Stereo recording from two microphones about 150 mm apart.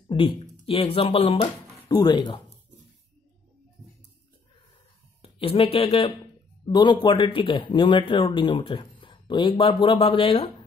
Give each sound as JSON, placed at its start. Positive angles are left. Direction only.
{"t": 0.1, "sound": "speech", "side_deg": 35}
{"t": 5.2, "sound": "speech", "side_deg": 40}
{"t": 6.7, "sound": "speech", "side_deg": 30}